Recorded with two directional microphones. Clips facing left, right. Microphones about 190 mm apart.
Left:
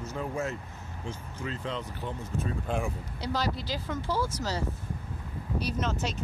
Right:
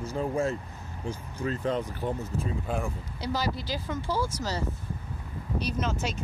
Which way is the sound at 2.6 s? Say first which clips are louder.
Even; 5° right (ahead or behind).